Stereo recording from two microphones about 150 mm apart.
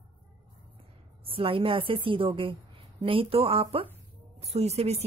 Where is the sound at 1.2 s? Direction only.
35° right (ahead or behind).